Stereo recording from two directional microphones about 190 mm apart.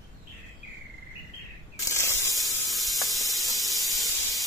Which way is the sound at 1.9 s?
15° left (ahead or behind).